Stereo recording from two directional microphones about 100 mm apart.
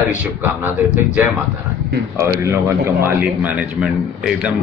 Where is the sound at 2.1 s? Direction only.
25° right (ahead or behind).